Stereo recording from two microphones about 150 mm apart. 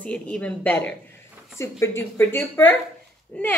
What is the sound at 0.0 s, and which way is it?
Speech, 5° left (ahead or behind).